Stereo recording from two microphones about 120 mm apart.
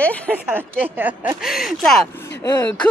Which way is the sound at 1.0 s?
15° right (ahead or behind).